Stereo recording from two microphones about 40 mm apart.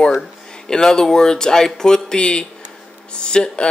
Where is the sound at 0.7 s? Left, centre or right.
Centre.